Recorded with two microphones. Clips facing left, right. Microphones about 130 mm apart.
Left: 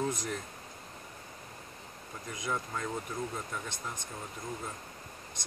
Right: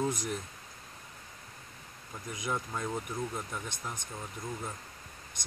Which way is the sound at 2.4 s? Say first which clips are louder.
Right 1 dB; 15° right (ahead or behind).